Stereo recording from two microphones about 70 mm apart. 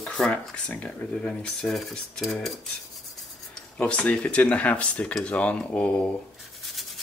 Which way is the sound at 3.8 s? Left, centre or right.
Centre.